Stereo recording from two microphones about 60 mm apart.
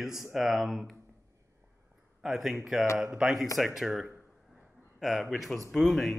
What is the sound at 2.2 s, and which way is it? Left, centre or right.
Speech, centre.